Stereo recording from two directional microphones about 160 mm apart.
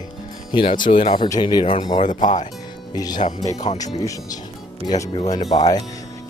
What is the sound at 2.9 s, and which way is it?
Speech, 25° left (ahead or behind).